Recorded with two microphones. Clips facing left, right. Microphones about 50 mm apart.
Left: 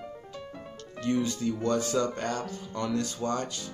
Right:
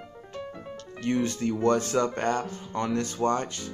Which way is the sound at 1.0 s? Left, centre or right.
Right.